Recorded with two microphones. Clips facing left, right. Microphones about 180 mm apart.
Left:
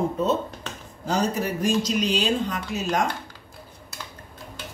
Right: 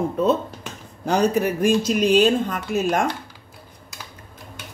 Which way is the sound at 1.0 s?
60° right (ahead or behind).